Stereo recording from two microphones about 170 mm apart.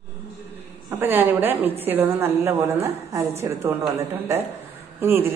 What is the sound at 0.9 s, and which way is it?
A woman's voice, 10° right (ahead or behind).